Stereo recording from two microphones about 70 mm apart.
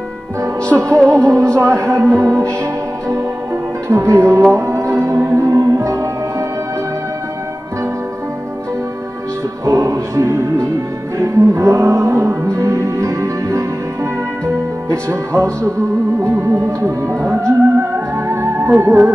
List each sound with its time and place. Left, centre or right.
0.7 s music: right
3.9 s music: right
9.7 s music: right